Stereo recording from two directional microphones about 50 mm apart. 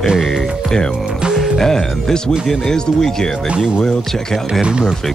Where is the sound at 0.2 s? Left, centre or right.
Centre.